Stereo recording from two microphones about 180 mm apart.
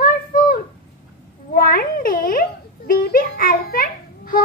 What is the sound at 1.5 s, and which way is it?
Cat, 55° left (ahead or behind).